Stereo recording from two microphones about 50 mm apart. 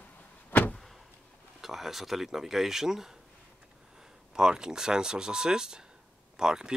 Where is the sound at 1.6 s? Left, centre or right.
Centre.